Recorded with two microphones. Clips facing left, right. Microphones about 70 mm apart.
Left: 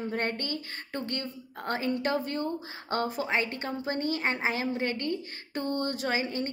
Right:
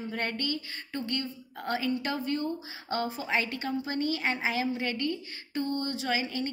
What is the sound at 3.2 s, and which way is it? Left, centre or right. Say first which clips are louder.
A woman's voice: even; left.